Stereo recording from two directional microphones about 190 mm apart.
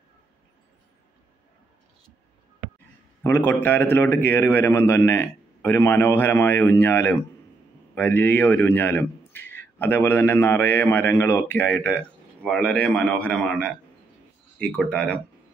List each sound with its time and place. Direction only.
3.3 s a man's voice: 10° left (ahead or behind)